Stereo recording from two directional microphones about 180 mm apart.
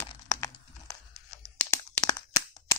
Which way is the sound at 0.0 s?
20° left (ahead or behind).